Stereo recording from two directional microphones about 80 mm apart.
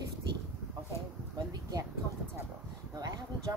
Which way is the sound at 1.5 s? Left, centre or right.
Right.